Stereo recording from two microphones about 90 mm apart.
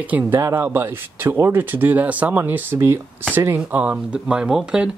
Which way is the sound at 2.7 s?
30° right (ahead or behind).